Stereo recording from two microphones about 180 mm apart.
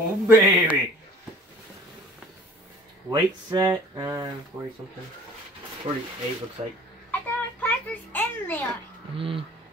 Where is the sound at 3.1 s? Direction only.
20° right (ahead or behind).